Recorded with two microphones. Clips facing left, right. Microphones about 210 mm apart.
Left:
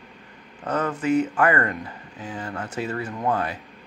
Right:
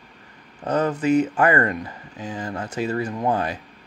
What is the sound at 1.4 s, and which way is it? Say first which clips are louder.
Speech: right 2 dB; 30° right (ahead or behind).